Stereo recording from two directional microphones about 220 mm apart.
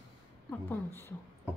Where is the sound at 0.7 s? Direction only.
10° left (ahead or behind).